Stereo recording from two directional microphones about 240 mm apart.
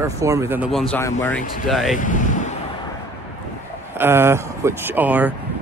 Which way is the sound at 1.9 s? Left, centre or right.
Left.